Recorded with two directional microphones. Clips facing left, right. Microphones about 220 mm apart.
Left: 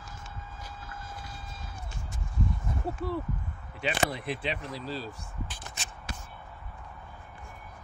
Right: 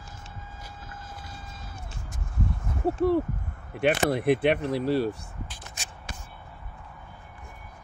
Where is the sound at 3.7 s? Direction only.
60° right (ahead or behind).